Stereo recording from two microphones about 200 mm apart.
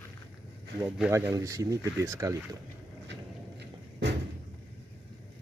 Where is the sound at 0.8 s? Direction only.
5° right (ahead or behind).